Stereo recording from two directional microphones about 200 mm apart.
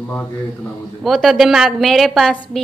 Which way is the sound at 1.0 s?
Centre (ahead or behind).